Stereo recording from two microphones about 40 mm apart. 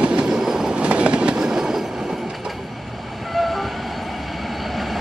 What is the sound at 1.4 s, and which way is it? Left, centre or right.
Train, centre.